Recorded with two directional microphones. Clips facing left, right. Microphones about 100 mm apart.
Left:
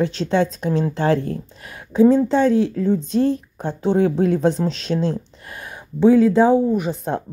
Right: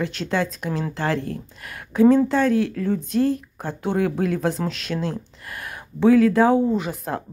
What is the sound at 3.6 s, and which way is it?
Speech, 30° left (ahead or behind).